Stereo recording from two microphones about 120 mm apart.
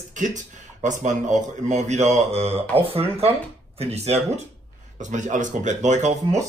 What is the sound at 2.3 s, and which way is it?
Speech, 60° right (ahead or behind).